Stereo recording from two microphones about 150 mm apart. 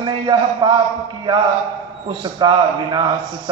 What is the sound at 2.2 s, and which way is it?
Speech, 30° right (ahead or behind).